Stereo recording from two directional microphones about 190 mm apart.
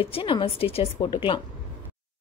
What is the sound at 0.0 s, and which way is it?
A woman's voice, 30° left (ahead or behind).